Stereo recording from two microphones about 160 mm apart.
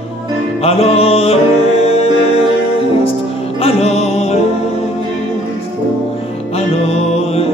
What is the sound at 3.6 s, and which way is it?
Music, 40° left (ahead or behind).